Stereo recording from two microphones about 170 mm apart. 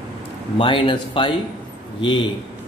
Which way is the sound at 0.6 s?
30° left (ahead or behind).